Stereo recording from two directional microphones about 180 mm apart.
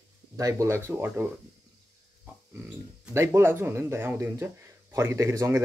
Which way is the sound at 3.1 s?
15° right (ahead or behind).